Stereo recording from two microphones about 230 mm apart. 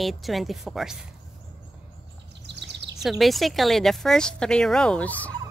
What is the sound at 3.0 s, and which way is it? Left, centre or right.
A woman's voice, centre.